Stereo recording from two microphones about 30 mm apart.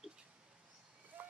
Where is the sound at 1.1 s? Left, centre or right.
Right.